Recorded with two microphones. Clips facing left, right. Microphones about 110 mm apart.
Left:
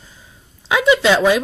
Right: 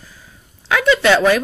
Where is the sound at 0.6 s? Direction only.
15° left (ahead or behind).